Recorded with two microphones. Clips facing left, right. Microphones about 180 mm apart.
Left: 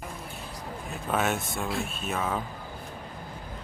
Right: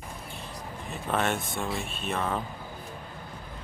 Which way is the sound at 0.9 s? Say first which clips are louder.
Even; 5° left (ahead or behind).